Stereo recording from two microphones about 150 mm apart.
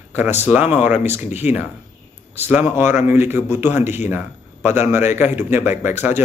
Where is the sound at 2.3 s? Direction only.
10° right (ahead or behind).